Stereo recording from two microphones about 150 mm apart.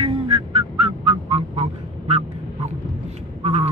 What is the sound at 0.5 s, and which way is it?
Music, 40° right (ahead or behind).